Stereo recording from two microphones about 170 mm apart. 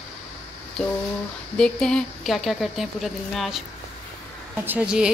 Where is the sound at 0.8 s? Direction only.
5° left (ahead or behind).